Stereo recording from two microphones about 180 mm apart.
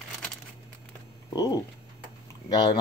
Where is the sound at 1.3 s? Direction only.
20° left (ahead or behind).